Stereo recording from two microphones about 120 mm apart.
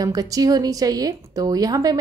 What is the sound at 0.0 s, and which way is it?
Speech, 30° right (ahead or behind).